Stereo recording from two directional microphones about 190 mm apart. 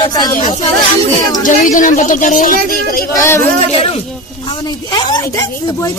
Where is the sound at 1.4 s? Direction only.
45° left (ahead or behind).